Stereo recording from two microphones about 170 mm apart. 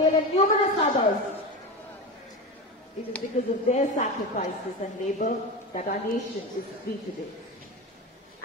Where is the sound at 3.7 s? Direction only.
45° left (ahead or behind).